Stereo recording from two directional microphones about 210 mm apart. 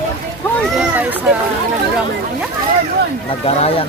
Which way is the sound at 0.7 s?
10° right (ahead or behind).